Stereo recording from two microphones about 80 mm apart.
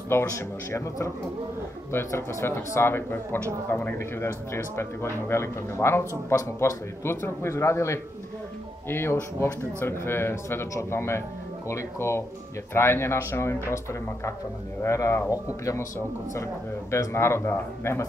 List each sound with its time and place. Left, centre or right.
0.1 s speech: left
16.9 s speech: left